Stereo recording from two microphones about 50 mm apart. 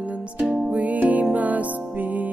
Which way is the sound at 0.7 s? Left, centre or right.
Right.